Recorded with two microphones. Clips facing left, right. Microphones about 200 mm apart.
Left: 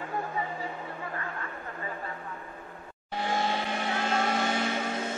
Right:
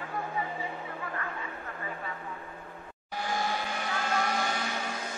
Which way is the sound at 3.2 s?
25° left (ahead or behind).